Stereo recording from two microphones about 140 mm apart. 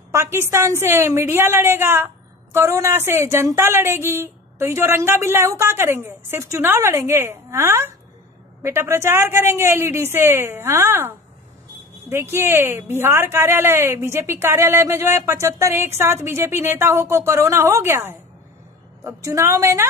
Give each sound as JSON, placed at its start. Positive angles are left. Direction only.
{"t": 0.1, "sound": "a woman's voice", "side_deg": -20}